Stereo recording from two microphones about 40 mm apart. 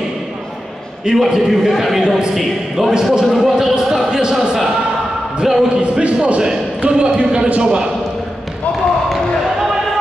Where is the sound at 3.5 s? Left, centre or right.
Centre.